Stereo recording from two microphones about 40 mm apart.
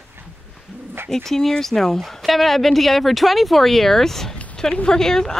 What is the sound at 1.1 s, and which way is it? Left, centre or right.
Speech, centre.